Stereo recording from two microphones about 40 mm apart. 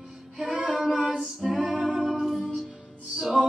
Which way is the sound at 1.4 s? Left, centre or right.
Centre.